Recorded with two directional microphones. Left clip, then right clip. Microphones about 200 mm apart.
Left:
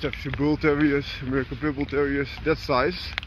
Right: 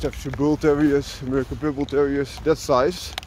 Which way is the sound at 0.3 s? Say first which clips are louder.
Right 3 dB; 25° right (ahead or behind).